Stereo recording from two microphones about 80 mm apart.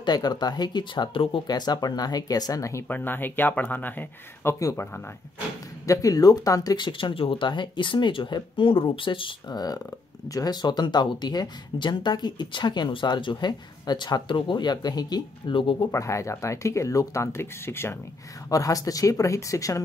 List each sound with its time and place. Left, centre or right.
0.0 s speech: left
2.9 s speech: left
5.9 s speech: left
6.8 s speech: left
10.2 s speech: left
15.9 s speech: left
18.5 s speech: left